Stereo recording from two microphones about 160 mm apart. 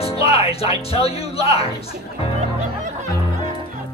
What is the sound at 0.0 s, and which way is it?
Speech, 40° left (ahead or behind).